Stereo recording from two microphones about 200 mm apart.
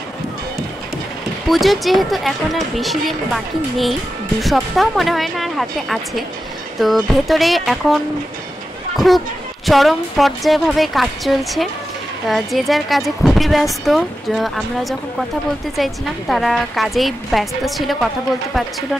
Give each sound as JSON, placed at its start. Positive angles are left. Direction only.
{"t": 1.5, "sound": "a woman's voice", "side_deg": 0}